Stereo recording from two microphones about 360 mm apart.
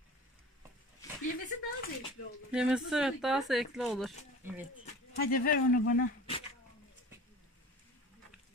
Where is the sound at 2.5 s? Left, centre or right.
Centre.